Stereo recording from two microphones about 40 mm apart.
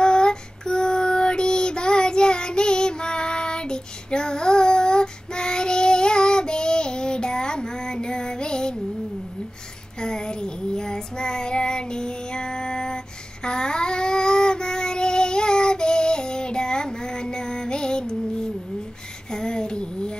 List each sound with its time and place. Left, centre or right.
0.0 s child singing: left
9.9 s child singing: centre
19.3 s a sound: centre